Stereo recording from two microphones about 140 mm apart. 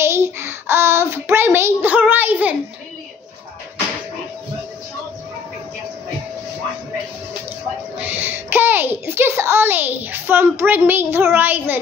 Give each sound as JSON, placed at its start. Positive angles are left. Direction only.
{"t": 0.0, "sound": "child singing", "side_deg": -20}
{"t": 8.1, "sound": "a sound", "side_deg": -15}
{"t": 10.6, "sound": "a child's voice", "side_deg": -15}